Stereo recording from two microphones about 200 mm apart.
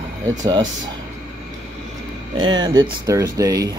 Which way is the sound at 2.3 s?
25° right (ahead or behind).